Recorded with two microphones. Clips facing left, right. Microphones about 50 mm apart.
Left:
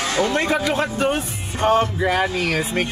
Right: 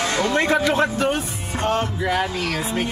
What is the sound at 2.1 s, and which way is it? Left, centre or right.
Speech, left.